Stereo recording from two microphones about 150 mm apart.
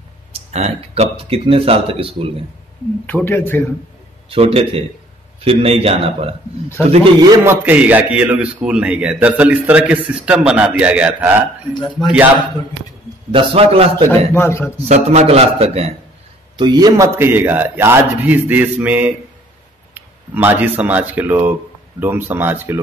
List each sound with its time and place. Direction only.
0.3 s speech: 45° right (ahead or behind)
3.1 s speech: 15° left (ahead or behind)
4.3 s speech: 40° right (ahead or behind)
7.4 s a man's voice: 10° right (ahead or behind)
11.7 s speech: 30° left (ahead or behind)
13.3 s speech: 35° right (ahead or behind)
14.3 s speech: 15° left (ahead or behind)
14.9 s a man's voice: 45° right (ahead or behind)
16.5 s a man's voice: 30° right (ahead or behind); by 22.8 s 15° right (ahead or behind)